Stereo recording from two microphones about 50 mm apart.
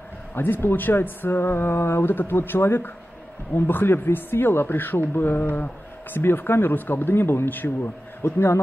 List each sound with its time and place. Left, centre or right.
0.3 s speech: left